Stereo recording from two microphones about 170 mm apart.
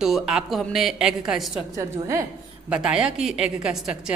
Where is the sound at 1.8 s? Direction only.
20° right (ahead or behind).